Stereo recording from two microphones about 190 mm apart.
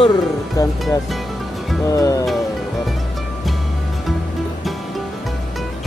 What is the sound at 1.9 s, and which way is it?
Music, 20° left (ahead or behind).